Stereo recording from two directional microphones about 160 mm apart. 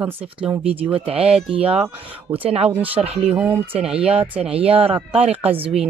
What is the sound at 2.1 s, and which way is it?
Speech, 10° right (ahead or behind).